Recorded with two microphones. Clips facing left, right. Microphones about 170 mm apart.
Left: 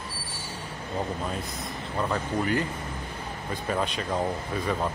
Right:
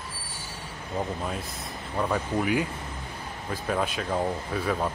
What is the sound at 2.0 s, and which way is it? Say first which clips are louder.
Speech: right 1 dB; 10° right (ahead or behind).